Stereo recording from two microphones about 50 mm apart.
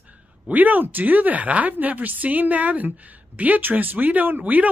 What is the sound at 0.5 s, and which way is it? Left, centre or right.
Speech, right.